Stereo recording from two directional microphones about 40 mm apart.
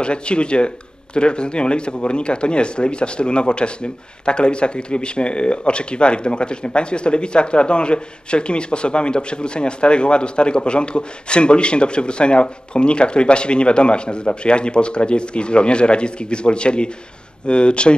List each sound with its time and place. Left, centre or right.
0.0 s speech: left